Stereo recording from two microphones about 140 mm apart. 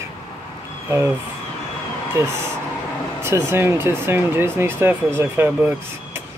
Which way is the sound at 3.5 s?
15° right (ahead or behind).